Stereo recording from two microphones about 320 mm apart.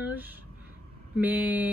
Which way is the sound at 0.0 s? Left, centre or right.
Centre.